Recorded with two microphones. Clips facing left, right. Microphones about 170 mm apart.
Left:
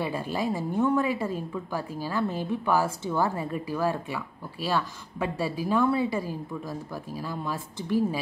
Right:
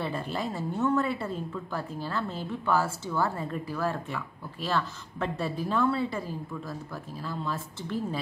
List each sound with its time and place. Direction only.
0.0 s a woman's voice: 10° left (ahead or behind)